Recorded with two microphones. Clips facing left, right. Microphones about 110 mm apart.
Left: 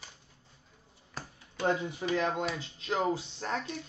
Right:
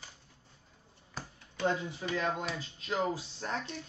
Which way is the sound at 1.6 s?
20° left (ahead or behind).